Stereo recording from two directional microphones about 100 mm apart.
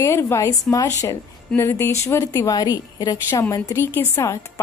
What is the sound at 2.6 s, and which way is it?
A woman's voice, 40° left (ahead or behind).